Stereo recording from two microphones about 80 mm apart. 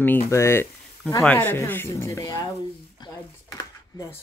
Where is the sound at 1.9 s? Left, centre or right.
Left.